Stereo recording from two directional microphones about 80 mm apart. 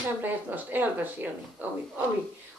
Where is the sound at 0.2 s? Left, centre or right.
Right.